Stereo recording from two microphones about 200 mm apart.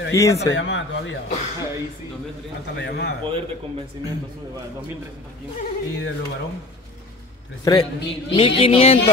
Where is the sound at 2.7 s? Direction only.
60° left (ahead or behind).